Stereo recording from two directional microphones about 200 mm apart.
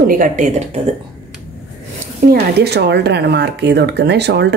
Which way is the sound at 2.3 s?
55° right (ahead or behind).